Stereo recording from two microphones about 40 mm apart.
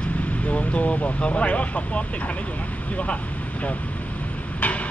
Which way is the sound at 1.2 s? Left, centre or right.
Left.